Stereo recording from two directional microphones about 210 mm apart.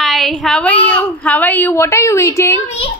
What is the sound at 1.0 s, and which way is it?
A woman's voice, 10° left (ahead or behind).